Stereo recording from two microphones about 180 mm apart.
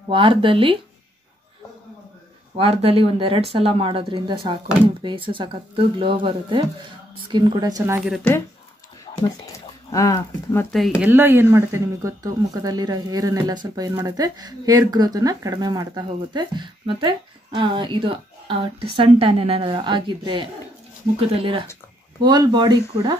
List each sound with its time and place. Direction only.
0.1 s speech: 30° right (ahead or behind)
2.5 s speech: 35° right (ahead or behind); by 8.0 s 20° right (ahead or behind)
8.1 s speech: 5° left (ahead or behind)
9.8 s speech: 20° left (ahead or behind)
11.0 s speech: 10° right (ahead or behind)